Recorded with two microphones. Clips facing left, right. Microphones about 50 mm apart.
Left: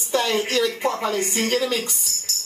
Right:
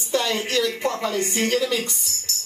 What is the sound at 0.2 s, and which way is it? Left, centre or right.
Speech, left.